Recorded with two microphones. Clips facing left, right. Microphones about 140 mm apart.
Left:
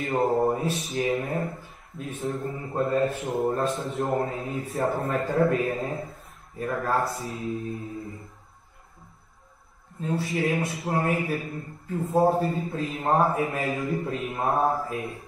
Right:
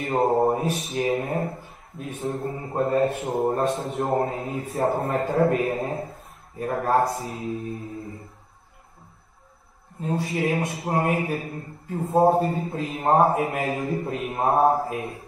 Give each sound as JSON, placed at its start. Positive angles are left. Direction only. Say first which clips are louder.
{"t": 0.0, "sound": "speech", "louder": "right 2 dB", "side_deg": -30}
{"t": 3.1, "sound": "a man's voice", "louder": "right 2 dB", "side_deg": -25}
{"t": 10.0, "sound": "a man's voice", "louder": "right 1 dB", "side_deg": -30}